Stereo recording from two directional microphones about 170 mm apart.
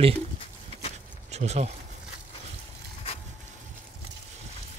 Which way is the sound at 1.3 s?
40° right (ahead or behind).